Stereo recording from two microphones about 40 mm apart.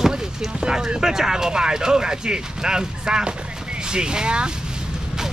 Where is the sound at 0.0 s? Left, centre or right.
Centre.